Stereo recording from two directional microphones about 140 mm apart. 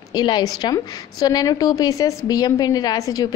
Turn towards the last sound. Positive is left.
turn(degrees=25)  # may be behind; listen again after turning